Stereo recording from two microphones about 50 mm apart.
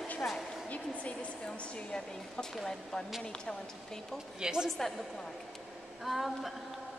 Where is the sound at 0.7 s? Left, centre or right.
Left.